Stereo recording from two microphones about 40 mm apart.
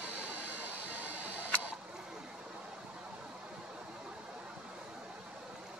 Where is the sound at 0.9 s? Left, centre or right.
Right.